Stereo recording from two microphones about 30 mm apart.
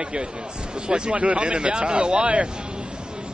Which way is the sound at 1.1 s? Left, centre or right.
Right.